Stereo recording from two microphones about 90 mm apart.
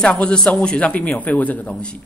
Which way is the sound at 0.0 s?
10° left (ahead or behind).